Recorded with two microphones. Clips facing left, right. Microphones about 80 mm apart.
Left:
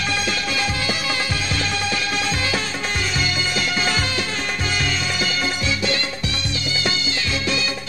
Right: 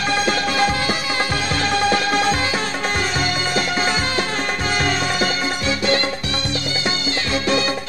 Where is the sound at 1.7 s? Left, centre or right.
Right.